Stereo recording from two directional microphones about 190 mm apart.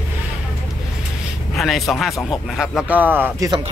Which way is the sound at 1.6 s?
Centre (ahead or behind).